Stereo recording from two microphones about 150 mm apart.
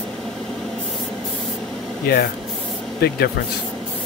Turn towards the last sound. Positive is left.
turn(degrees=90)